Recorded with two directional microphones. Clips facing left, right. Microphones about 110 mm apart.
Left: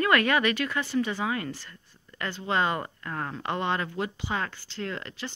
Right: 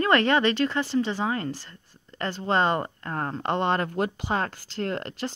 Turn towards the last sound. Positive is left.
turn(degrees=-40)  # may be behind; listen again after turning